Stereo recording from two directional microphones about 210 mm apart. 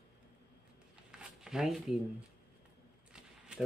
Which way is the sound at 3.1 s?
5° right (ahead or behind).